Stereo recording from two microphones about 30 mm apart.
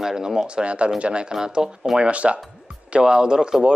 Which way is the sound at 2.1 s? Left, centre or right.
Right.